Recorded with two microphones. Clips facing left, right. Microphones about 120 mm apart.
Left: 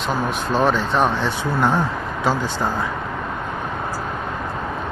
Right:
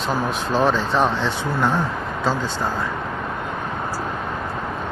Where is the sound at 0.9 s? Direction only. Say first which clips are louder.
Left 1 dB; 10° left (ahead or behind).